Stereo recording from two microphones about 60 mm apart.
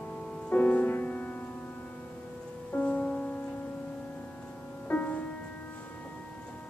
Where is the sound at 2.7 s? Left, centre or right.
Left.